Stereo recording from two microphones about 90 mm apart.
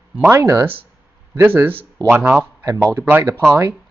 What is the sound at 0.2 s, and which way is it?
Speech, 35° right (ahead or behind).